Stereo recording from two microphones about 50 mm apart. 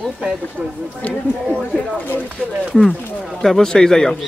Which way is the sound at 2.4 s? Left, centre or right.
Centre.